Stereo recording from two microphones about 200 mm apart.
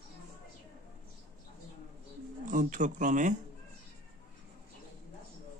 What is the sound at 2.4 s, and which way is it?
Speech, 40° right (ahead or behind).